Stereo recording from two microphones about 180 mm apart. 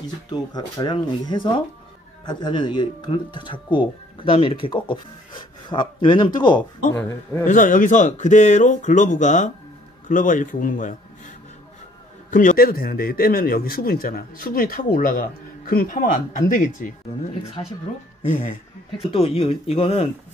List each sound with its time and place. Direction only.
0.3 s speech: 20° left (ahead or behind)
7.4 s a man's voice: 45° left (ahead or behind)
19.0 s speech: 30° left (ahead or behind)